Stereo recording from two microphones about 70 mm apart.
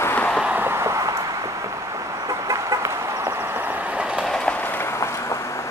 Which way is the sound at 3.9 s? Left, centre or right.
Centre.